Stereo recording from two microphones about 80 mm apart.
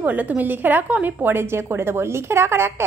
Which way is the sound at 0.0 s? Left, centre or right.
Right.